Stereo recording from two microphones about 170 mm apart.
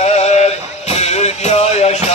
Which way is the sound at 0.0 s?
40° left (ahead or behind).